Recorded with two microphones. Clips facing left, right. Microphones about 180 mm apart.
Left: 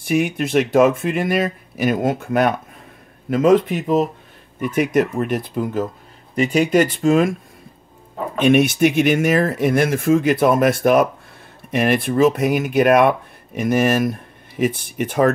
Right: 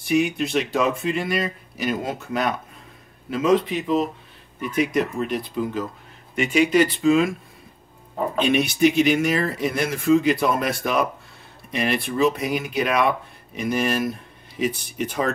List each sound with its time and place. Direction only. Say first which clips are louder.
0.0 s speech: left 2 dB; 55° left (ahead or behind)
6.3 s speech: left 3 dB; 40° left (ahead or behind)
8.4 s speech: left 5 dB; 55° left (ahead or behind)